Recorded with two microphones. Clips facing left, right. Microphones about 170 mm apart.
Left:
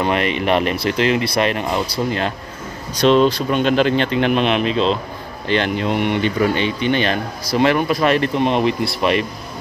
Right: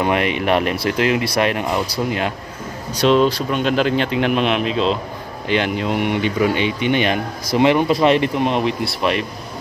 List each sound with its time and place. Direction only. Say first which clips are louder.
0.0 s speech: even; 10° right (ahead or behind)
8.4 s speech: left 2 dB; centre (ahead or behind)